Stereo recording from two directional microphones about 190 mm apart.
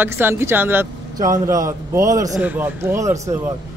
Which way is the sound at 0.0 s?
10° right (ahead or behind).